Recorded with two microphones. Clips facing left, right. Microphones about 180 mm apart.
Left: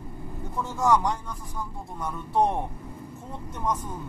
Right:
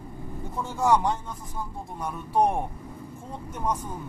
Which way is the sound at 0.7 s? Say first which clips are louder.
Right 1 dB; 20° right (ahead or behind).